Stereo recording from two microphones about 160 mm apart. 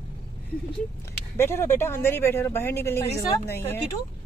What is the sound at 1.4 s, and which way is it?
Speech, 15° left (ahead or behind).